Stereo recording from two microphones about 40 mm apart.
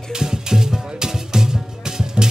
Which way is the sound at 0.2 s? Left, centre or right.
Centre.